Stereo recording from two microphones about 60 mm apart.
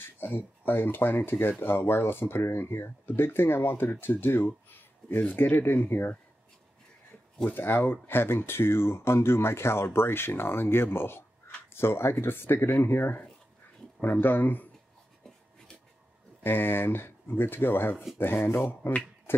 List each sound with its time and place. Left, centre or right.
0.0 s speech: left
7.5 s speech: left
14.2 s speech: left
16.4 s speech: left